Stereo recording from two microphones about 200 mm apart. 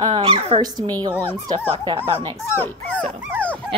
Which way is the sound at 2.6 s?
5° left (ahead or behind).